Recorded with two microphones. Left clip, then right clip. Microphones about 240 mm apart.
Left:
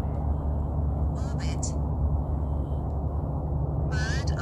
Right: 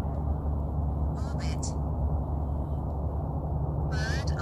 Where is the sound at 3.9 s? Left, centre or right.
Centre.